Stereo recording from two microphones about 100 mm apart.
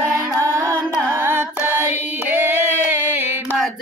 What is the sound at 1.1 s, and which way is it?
Carnatic music, 25° right (ahead or behind).